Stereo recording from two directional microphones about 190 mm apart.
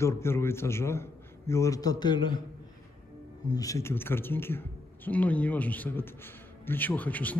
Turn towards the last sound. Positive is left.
turn(degrees=10)  # may be behind; listen again after turning